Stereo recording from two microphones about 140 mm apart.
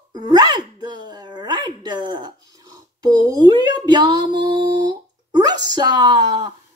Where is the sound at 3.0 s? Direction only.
30° right (ahead or behind).